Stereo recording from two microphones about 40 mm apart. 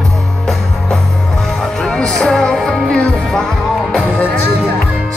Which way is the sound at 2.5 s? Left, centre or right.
Centre.